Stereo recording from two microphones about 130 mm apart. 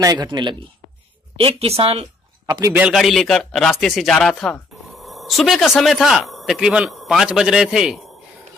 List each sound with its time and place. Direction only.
0.0 s speech: 35° right (ahead or behind)
1.4 s speech: 50° right (ahead or behind)
2.9 s speech: centre (ahead or behind)